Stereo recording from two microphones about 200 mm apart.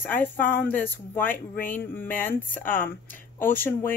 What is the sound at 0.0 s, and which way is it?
Speech, 10° left (ahead or behind).